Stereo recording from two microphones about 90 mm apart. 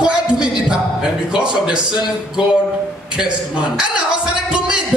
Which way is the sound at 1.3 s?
10° right (ahead or behind).